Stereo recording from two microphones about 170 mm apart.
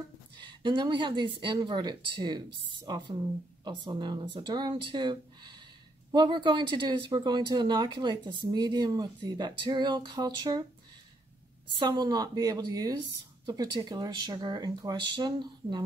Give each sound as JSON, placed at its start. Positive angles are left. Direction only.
{"t": 0.4, "sound": "speech", "side_deg": -25}
{"t": 11.8, "sound": "speech", "side_deg": -25}